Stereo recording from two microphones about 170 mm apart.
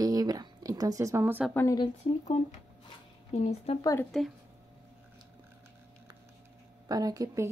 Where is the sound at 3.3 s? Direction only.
40° left (ahead or behind).